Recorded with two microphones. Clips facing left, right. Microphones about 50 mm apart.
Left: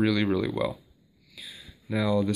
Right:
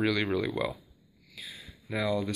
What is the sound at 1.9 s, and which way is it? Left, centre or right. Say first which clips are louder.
Speech: left 3 dB; right.